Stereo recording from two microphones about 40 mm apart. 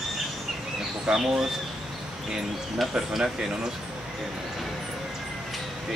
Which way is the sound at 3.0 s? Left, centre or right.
Centre.